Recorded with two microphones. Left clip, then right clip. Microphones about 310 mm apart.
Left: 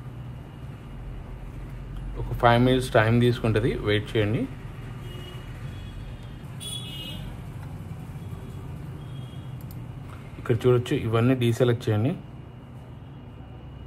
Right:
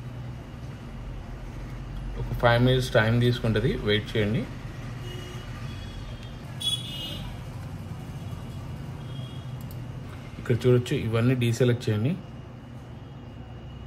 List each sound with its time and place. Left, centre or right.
2.4 s speech: left
10.4 s speech: centre